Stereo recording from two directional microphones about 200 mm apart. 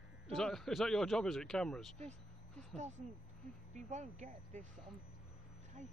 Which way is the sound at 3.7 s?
35° right (ahead or behind).